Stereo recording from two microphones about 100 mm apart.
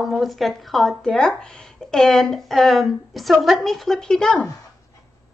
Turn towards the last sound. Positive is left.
turn(degrees=5)  # may be behind; listen again after turning